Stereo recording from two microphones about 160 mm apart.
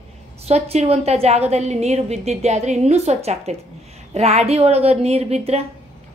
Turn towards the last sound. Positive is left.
turn(degrees=-40)  # may be behind; listen again after turning